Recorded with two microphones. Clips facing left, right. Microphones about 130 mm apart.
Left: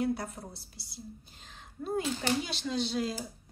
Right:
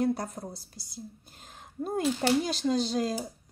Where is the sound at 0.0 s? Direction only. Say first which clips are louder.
Right 3 dB; 40° right (ahead or behind).